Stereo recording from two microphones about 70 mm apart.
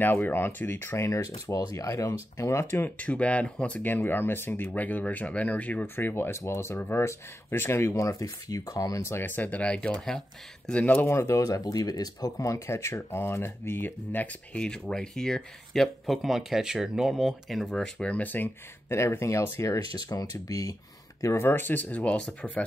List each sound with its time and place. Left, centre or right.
0.0 s speech: left
1.3 s speech: left
3.0 s speech: centre
5.9 s speech: left
9.0 s speech: left; by 10.0 s centre
10.9 s speech: left
11.1 s speech: left
14.6 s speech: centre
18.0 s speech: left
18.9 s speech: left
19.9 s speech: left
21.2 s speech: left